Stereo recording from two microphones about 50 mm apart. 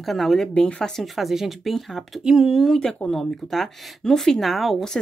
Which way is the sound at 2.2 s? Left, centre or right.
Centre.